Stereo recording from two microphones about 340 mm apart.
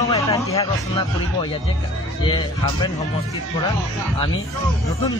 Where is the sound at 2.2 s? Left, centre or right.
Centre.